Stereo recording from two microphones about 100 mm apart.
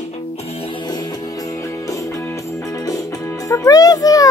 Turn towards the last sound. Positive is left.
turn(degrees=35)  # may be behind; listen again after turning